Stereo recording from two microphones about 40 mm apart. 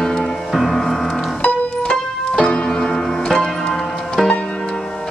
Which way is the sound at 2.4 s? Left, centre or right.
Left.